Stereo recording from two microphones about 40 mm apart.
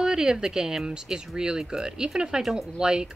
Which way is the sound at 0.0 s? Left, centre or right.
Centre.